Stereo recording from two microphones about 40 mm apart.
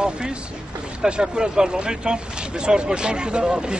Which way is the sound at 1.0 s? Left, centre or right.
Right.